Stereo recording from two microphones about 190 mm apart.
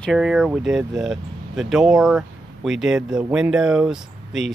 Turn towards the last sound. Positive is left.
turn(degrees=0)  # may be behind; listen again after turning